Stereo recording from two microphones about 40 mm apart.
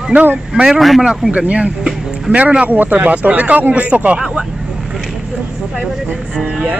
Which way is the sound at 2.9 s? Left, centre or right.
Right.